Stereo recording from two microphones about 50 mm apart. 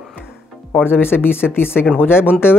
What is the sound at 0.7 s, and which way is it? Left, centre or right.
Speech, left.